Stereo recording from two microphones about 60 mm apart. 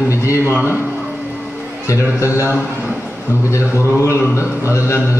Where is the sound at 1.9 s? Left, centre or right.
Left.